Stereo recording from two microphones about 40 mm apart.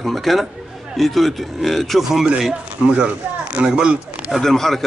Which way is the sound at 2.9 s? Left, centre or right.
Right.